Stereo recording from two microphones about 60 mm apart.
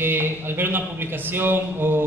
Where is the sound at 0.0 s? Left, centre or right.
Right.